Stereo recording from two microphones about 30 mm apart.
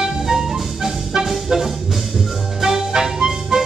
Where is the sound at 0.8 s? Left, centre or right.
Centre.